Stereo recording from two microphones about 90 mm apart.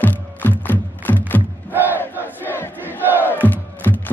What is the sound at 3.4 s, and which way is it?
Music, 20° left (ahead or behind).